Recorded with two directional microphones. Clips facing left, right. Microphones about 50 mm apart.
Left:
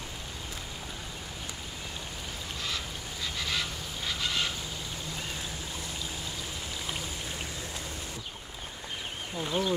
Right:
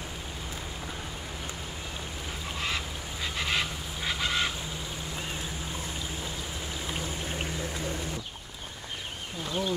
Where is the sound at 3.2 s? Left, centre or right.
Right.